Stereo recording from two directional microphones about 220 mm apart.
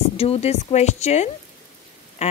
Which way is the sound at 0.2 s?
25° left (ahead or behind).